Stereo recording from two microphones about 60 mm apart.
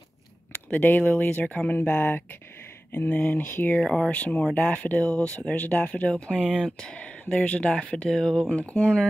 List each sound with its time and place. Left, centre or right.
0.7 s speech: left
1.8 s speech: left
3.7 s speech: centre